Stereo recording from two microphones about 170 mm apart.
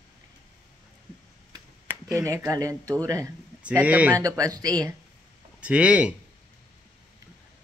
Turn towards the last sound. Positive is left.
turn(degrees=-5)  # may be behind; listen again after turning